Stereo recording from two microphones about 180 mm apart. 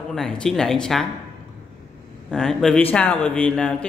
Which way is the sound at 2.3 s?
5° left (ahead or behind).